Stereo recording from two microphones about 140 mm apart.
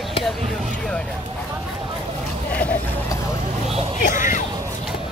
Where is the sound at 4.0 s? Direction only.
65° left (ahead or behind).